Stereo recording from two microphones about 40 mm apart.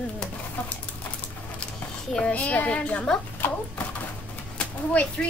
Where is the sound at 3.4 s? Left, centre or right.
Left.